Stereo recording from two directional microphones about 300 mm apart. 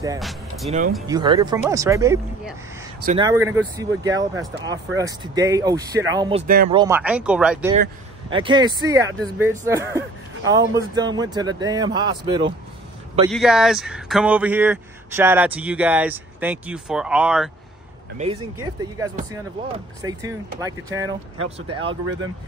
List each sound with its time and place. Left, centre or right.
0.2 s speech: centre
0.7 s speech: right
1.0 s speech: centre
6.4 s speech: right
6.7 s speech: centre
7.7 s speech: centre
13.3 s speech: centre
18.1 s speech: right
21.8 s speech: right